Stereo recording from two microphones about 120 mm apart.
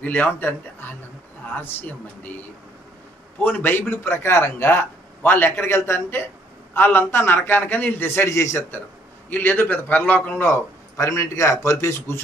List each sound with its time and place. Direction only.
0.0 s a man's voice: 15° left (ahead or behind)
3.4 s a man's voice: 15° left (ahead or behind)